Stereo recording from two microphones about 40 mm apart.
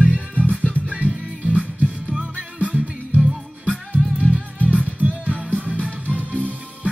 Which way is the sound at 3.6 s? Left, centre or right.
Right.